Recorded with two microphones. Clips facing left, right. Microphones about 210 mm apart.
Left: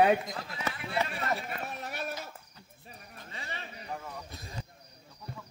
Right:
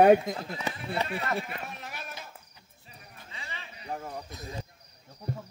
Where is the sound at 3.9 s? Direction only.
45° right (ahead or behind).